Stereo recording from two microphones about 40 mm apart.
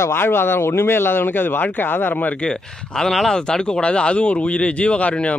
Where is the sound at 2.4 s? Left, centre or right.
Centre.